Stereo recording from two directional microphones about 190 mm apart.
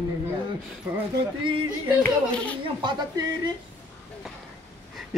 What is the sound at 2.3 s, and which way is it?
Speech, 5° left (ahead or behind).